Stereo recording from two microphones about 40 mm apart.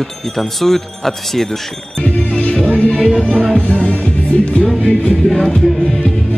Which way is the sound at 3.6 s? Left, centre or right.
Left.